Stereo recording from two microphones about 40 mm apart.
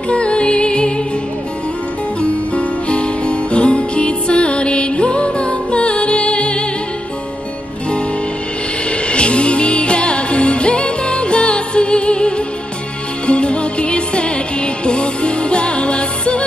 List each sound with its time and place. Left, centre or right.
0.1 s music: left
2.2 s music: left
9.0 s music: left